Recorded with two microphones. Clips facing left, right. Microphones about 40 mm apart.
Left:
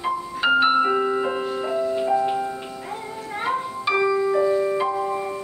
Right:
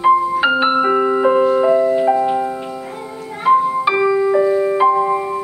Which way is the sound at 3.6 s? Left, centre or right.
Right.